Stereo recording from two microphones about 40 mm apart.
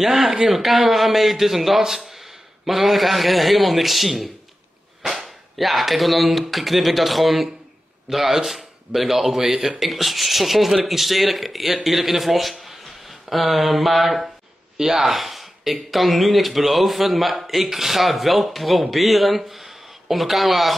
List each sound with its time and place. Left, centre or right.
0.0 s speech: centre
5.6 s speech: centre